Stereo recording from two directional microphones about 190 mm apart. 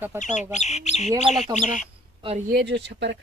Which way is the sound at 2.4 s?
60° right (ahead or behind).